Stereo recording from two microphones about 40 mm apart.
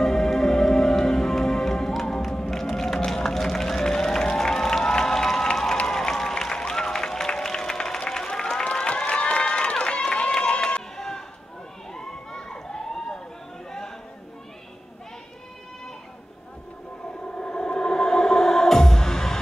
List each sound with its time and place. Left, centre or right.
0.0 s music: centre
8.6 s crowd: left
11.0 s run: centre
11.9 s a sound: centre
17.5 s music: centre